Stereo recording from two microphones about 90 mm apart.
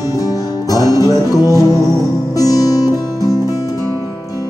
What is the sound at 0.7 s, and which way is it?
Music, 45° left (ahead or behind).